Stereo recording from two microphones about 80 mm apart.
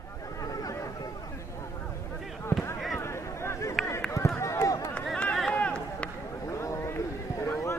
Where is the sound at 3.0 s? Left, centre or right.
Left.